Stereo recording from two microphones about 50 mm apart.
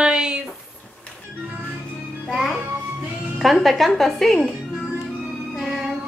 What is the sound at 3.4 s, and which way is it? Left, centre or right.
Speech, centre.